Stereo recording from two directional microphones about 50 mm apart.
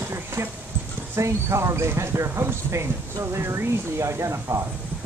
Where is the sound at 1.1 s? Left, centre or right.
Right.